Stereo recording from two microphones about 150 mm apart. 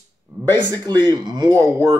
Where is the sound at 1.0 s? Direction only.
30° right (ahead or behind).